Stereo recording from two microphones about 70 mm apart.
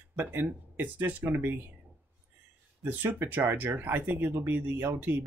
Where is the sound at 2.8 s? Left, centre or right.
Right.